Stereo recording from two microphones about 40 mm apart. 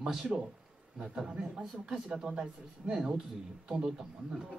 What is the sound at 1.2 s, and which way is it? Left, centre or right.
A man's voice, right.